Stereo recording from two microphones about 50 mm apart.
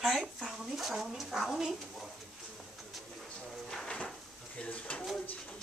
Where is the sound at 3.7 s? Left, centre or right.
Centre.